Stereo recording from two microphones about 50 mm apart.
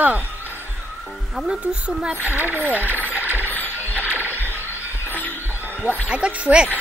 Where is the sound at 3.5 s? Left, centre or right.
Left.